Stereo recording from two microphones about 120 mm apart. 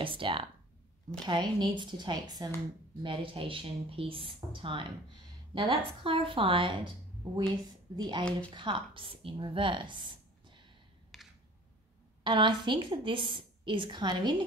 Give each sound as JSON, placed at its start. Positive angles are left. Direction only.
{"t": 0.0, "sound": "speech", "side_deg": -45}
{"t": 1.2, "sound": "a woman's voice", "side_deg": -35}
{"t": 3.0, "sound": "a woman's voice", "side_deg": -50}
{"t": 11.1, "sound": "a sound", "side_deg": 0}
{"t": 12.2, "sound": "a woman's voice", "side_deg": -40}